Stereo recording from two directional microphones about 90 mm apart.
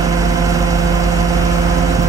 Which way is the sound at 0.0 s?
40° right (ahead or behind).